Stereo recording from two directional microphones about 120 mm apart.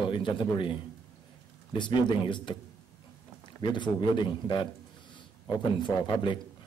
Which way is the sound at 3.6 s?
40° left (ahead or behind).